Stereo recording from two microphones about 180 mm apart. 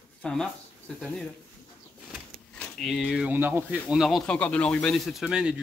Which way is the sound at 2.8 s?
Centre (ahead or behind).